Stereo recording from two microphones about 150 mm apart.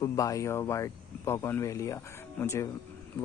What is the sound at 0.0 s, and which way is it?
Speech, 20° left (ahead or behind).